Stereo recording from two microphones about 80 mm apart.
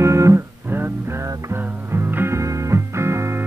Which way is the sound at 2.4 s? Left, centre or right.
Right.